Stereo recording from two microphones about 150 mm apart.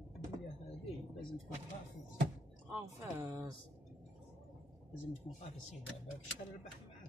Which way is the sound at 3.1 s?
15° right (ahead or behind).